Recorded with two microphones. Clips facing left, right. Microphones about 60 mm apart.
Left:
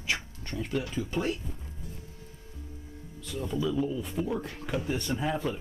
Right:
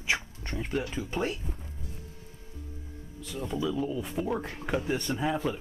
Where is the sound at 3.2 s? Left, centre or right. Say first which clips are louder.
Left 1 dB; centre.